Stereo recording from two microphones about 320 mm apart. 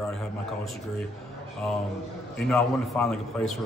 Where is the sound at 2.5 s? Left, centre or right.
Centre.